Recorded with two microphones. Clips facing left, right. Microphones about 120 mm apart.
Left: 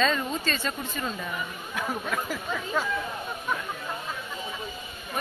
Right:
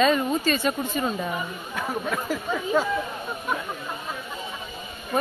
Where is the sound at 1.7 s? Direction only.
5° right (ahead or behind).